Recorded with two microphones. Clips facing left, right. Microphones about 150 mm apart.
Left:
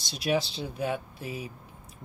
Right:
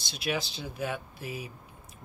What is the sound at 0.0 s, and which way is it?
Speech, 35° left (ahead or behind).